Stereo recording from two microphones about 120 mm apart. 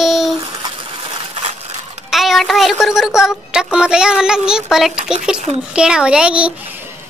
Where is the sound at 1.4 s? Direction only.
65° right (ahead or behind).